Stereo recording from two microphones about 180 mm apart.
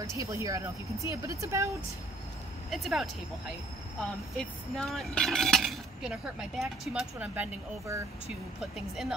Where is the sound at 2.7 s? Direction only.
Centre (ahead or behind).